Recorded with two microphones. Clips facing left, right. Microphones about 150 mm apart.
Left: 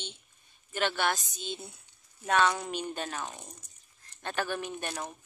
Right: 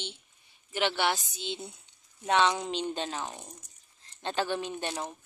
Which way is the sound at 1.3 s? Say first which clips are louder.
Right 2 dB; 75° right (ahead or behind).